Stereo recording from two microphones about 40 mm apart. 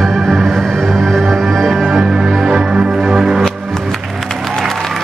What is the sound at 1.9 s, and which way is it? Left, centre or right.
Music, right.